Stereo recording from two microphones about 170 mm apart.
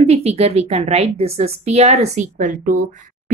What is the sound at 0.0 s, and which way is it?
A woman's voice, 40° right (ahead or behind).